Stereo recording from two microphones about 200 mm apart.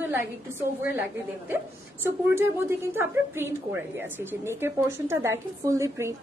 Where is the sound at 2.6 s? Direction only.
10° right (ahead or behind).